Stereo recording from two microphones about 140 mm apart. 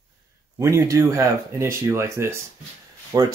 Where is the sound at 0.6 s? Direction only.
25° right (ahead or behind).